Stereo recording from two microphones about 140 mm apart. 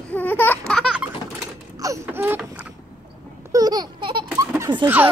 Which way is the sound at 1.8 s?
20° right (ahead or behind).